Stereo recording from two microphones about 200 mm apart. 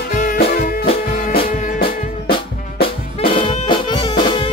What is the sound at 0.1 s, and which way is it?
Music, 40° left (ahead or behind).